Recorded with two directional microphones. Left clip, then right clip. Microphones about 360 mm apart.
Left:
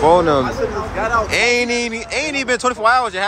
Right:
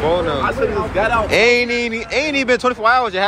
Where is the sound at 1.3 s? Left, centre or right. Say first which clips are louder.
Right 2 dB; centre.